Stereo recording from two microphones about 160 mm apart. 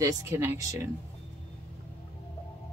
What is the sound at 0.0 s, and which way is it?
Speech, 15° right (ahead or behind).